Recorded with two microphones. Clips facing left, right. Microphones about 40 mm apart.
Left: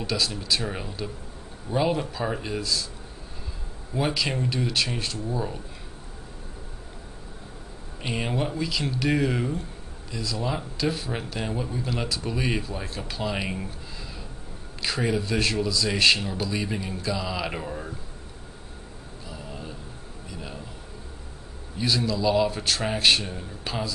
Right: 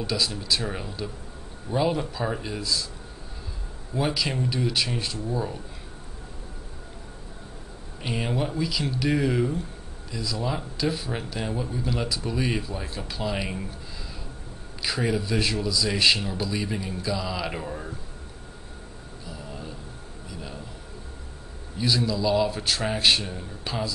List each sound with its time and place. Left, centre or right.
0.0 s a man's voice: centre
3.9 s a man's voice: centre
8.0 s a man's voice: centre
14.8 s a man's voice: centre
19.2 s a sound: centre
21.7 s a man's voice: centre